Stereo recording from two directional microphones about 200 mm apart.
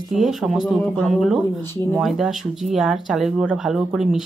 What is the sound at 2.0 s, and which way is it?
A woman's voice, centre (ahead or behind).